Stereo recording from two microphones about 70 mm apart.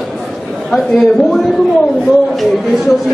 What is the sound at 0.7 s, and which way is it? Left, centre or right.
Speech, centre.